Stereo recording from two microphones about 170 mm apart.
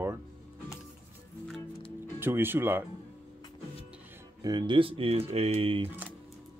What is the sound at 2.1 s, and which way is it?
Speech, 15° right (ahead or behind).